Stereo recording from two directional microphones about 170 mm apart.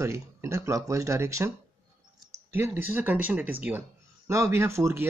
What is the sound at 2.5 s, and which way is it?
Speech, 10° right (ahead or behind).